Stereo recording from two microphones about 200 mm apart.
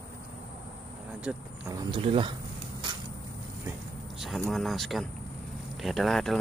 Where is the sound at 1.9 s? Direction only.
25° right (ahead or behind).